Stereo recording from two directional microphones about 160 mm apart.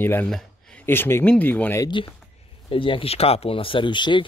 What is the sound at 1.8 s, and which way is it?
Speech, 30° left (ahead or behind).